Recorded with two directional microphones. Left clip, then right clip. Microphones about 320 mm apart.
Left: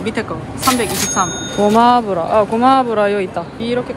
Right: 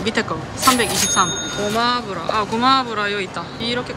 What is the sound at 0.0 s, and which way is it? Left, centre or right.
Speech, centre.